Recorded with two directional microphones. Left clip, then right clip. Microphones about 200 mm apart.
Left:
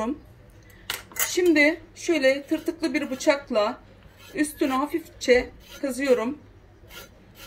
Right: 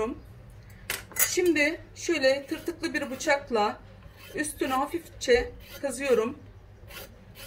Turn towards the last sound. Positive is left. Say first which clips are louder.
# left 3 dB
turn(degrees=15)  # may be behind; listen again after turning